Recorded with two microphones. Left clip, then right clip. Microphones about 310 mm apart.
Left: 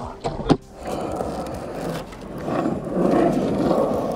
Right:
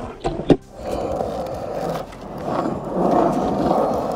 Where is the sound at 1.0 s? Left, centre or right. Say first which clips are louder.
Right 4 dB; right.